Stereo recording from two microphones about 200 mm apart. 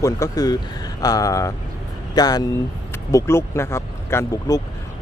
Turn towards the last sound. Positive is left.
turn(degrees=15)  # may be behind; listen again after turning